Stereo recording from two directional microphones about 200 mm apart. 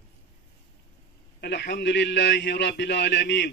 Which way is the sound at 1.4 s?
55° left (ahead or behind).